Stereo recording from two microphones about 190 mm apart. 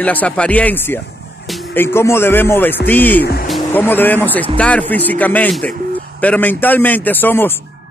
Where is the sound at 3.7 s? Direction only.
10° left (ahead or behind).